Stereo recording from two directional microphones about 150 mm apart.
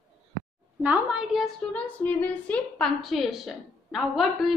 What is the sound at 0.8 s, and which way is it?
Speech, 10° right (ahead or behind).